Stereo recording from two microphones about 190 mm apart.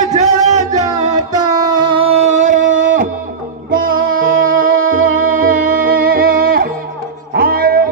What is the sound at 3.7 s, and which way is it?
Music, 50° right (ahead or behind).